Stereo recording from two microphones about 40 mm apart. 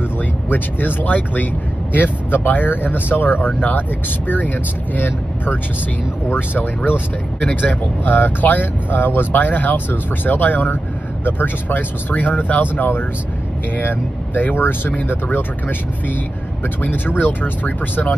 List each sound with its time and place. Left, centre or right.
0.5 s speech: left
3.5 s speech: left
4.9 s speech: left
7.3 s speech: left
16.6 s speech: left